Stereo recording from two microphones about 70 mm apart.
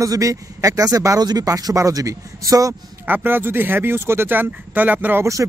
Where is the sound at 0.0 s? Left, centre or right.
Right.